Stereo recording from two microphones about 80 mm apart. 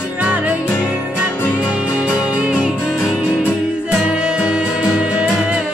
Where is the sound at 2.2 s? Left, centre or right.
Centre.